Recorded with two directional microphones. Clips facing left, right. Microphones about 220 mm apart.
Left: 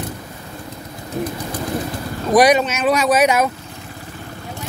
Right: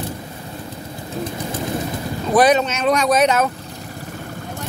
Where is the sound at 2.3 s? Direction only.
10° left (ahead or behind).